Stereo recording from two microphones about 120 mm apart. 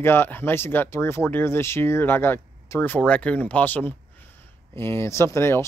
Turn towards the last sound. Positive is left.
turn(degrees=20)  # may be behind; listen again after turning